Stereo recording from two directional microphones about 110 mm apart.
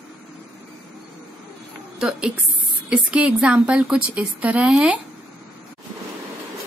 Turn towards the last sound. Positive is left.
turn(degrees=-10)  # may be behind; listen again after turning